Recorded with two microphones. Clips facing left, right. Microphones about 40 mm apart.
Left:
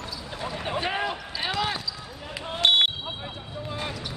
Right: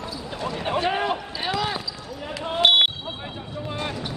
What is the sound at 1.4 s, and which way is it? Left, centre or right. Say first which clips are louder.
Basketball bounce: right 2 dB; centre.